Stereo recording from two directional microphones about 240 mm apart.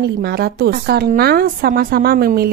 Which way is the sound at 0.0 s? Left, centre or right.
Right.